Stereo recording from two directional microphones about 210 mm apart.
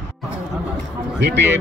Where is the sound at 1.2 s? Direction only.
55° right (ahead or behind).